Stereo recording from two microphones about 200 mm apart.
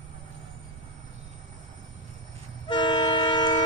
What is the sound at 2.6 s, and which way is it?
Train, 25° left (ahead or behind).